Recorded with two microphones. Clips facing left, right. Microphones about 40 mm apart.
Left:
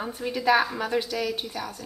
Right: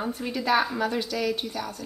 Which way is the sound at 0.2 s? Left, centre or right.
Centre.